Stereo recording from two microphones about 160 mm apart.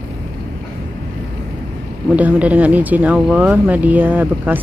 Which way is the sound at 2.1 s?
10° right (ahead or behind).